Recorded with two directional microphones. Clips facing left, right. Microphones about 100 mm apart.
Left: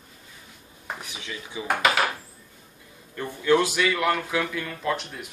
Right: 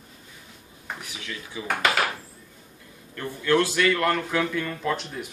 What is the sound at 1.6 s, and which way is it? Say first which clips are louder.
Speech: left 1 dB; 15° left (ahead or behind).